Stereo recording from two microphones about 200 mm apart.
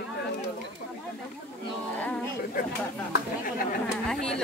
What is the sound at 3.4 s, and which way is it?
Speech, 45° left (ahead or behind).